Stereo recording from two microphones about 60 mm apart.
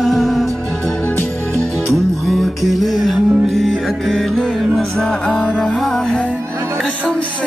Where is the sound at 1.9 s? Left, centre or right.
Centre.